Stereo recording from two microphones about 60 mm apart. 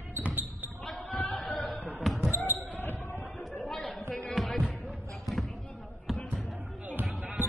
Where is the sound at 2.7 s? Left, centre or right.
Left.